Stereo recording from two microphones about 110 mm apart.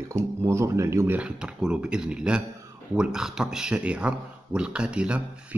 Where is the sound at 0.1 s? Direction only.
25° right (ahead or behind).